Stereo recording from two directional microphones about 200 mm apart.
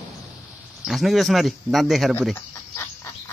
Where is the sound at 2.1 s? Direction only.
5° left (ahead or behind).